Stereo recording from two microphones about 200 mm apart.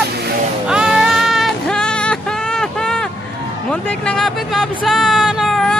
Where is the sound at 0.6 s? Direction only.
5° right (ahead or behind).